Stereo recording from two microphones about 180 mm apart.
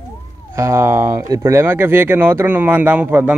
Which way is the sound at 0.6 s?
15° right (ahead or behind).